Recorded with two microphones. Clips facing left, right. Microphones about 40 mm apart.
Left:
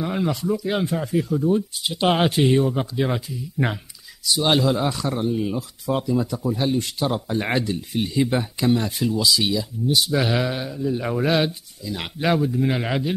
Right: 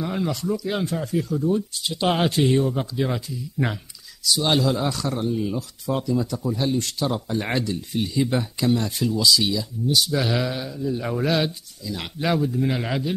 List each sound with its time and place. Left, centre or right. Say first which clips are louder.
0.0 s speech: left 2 dB; centre